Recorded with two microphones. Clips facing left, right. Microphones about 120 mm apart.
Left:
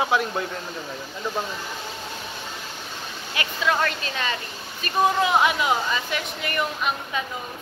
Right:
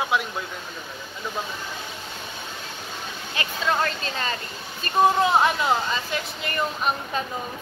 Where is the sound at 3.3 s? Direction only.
30° right (ahead or behind).